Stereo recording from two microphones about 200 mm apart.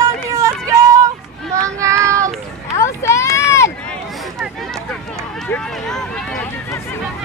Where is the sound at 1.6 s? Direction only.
15° right (ahead or behind).